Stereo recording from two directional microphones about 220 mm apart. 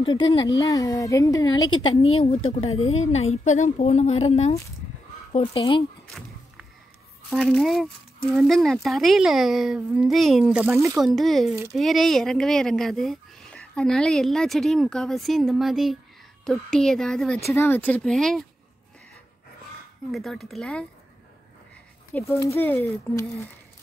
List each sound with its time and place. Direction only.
0.3 s a woman's voice: 20° left (ahead or behind)
7.2 s speech: centre (ahead or behind)
11.1 s speech: centre (ahead or behind)
20.1 s speech: centre (ahead or behind)
22.1 s a woman's voice: 10° left (ahead or behind)